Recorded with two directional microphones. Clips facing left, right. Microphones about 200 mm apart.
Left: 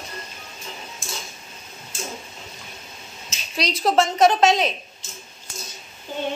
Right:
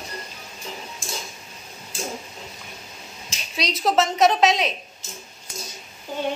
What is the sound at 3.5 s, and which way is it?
A woman's voice, centre (ahead or behind).